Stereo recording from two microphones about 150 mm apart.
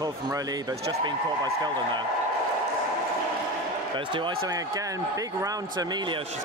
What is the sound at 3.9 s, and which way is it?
Speech, 35° right (ahead or behind).